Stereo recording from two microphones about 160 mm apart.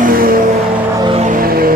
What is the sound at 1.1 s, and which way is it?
Music, 50° right (ahead or behind).